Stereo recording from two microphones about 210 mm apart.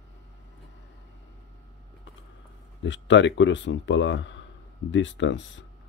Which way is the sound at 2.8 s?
60° left (ahead or behind).